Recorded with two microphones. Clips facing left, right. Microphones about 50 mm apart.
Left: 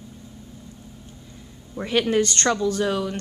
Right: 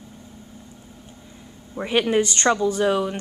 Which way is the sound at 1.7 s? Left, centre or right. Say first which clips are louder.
Right 1 dB; centre.